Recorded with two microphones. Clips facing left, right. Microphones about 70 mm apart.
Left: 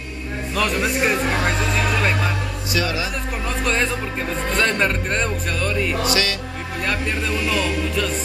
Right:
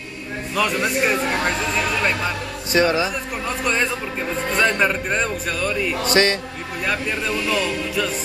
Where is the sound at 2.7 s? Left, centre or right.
Right.